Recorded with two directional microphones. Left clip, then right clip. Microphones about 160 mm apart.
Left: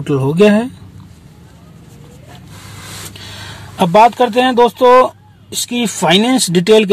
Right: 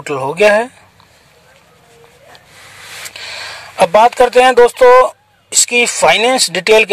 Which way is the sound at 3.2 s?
5° right (ahead or behind).